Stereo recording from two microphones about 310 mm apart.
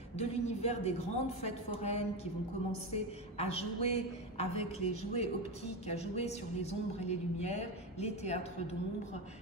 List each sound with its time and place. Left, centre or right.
0.2 s a woman's voice: left